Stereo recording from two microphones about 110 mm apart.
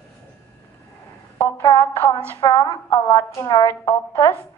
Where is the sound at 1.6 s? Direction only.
35° left (ahead or behind).